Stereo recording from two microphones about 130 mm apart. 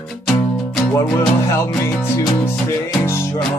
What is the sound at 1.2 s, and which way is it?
Music, 20° left (ahead or behind).